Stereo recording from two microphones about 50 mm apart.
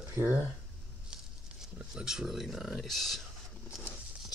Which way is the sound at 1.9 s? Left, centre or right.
Centre.